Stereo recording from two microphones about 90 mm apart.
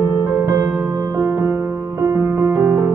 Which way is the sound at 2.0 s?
30° right (ahead or behind).